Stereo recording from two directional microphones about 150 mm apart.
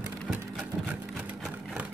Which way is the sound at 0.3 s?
5° right (ahead or behind).